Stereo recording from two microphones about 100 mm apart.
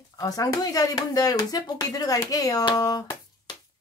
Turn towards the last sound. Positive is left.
turn(degrees=45)  # may be behind; listen again after turning